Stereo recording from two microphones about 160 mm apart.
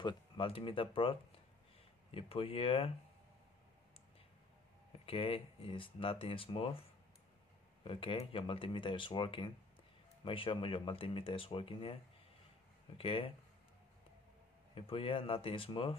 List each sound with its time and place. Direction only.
0.0 s speech: 35° left (ahead or behind)
5.0 s speech: 35° left (ahead or behind)
14.7 s speech: 35° left (ahead or behind)